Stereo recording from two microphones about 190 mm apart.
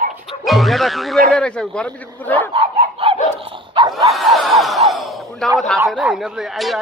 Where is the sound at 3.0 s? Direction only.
30° right (ahead or behind).